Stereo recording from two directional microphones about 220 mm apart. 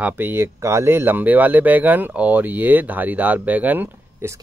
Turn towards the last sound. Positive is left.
turn(degrees=-10)  # may be behind; listen again after turning